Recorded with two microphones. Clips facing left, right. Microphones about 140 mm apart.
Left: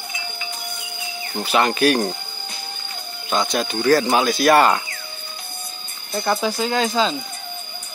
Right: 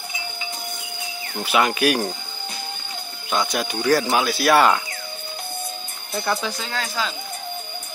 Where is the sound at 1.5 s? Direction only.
5° right (ahead or behind).